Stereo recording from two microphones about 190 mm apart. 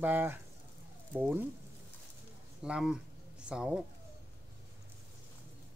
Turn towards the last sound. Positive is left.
turn(degrees=-5)  # may be behind; listen again after turning